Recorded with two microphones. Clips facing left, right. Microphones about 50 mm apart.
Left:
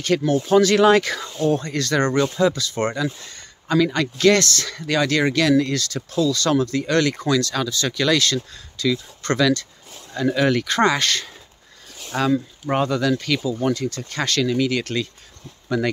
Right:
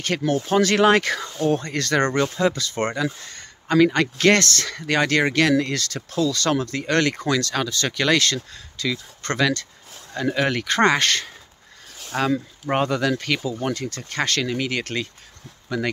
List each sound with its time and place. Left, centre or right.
0.2 s speech: right
2.3 s speech: right
12.2 s speech: right